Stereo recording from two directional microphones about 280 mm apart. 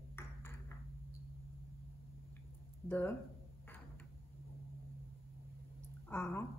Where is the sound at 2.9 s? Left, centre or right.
Centre.